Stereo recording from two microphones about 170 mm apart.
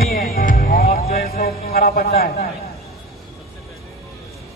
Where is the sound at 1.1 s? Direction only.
65° left (ahead or behind).